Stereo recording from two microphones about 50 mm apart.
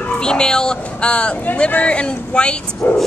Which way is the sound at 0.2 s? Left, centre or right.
Centre.